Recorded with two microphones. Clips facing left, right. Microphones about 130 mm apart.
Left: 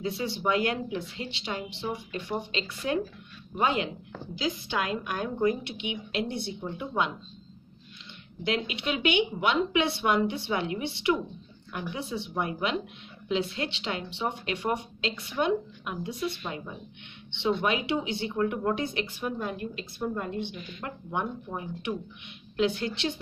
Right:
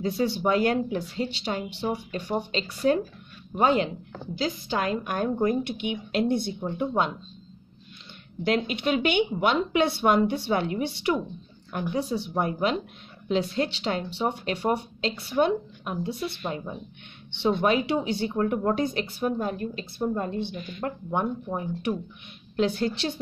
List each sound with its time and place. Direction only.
0.0 s speech: 40° right (ahead or behind)
8.5 s speech: 45° right (ahead or behind)